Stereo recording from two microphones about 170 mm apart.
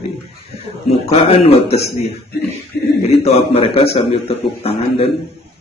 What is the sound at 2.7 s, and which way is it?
Speech, 70° left (ahead or behind).